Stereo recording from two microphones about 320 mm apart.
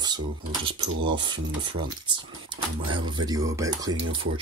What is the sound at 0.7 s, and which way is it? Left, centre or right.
Speech, centre.